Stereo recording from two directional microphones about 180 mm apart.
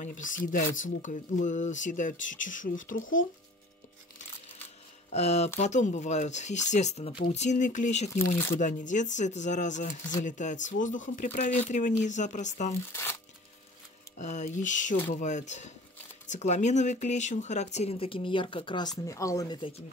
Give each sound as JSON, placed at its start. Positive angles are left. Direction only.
{"t": 0.0, "sound": "speech", "side_deg": 45}
{"t": 5.1, "sound": "speech", "side_deg": 35}
{"t": 12.9, "sound": "tearing", "side_deg": 15}
{"t": 14.1, "sound": "speech", "side_deg": 40}